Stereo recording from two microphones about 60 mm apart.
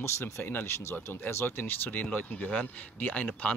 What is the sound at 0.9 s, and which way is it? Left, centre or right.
A man's voice, left.